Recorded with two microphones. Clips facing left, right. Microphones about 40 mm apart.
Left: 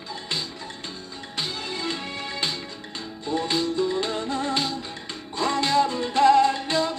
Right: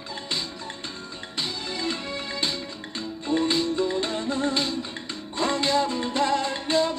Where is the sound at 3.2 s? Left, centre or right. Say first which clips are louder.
Right 1 dB; right.